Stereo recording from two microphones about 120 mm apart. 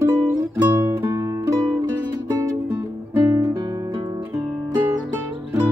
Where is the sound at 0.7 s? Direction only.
25° right (ahead or behind).